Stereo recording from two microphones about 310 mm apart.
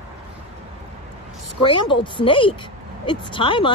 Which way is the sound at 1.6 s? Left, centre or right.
Centre.